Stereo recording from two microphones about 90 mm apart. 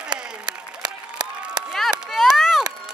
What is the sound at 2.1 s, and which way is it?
Run, 5° right (ahead or behind).